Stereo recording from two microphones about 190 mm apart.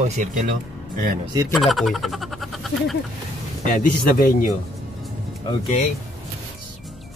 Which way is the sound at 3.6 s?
45° left (ahead or behind).